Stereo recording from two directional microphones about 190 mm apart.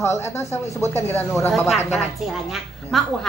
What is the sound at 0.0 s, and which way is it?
Speech, 15° left (ahead or behind).